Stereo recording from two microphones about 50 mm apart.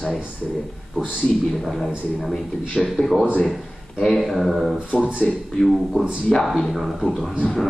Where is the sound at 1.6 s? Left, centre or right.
Centre.